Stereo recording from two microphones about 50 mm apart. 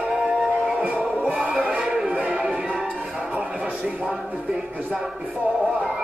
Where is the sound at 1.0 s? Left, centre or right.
Centre.